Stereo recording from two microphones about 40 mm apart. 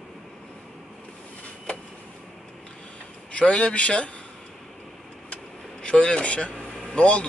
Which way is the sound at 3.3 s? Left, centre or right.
Left.